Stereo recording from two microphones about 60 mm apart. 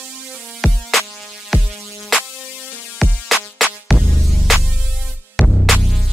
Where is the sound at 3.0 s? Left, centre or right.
Centre.